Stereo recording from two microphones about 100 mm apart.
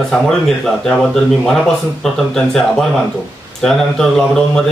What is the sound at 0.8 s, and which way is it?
Speech, 5° left (ahead or behind).